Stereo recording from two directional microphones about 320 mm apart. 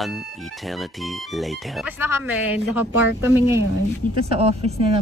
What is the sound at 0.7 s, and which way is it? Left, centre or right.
Speech, centre.